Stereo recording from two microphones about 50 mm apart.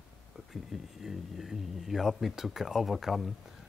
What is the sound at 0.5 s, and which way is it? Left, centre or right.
Speech, centre.